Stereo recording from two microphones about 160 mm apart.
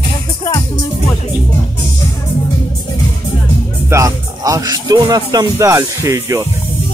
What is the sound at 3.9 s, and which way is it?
Speech, 20° right (ahead or behind).